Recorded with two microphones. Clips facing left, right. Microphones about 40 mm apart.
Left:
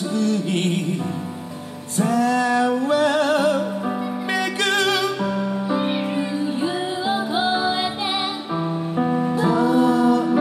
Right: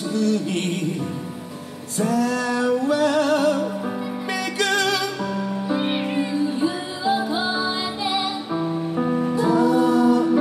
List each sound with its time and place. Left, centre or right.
0.2 s music: centre
2.0 s music: centre
6.6 s music: left
8.5 s music: centre
9.3 s music: centre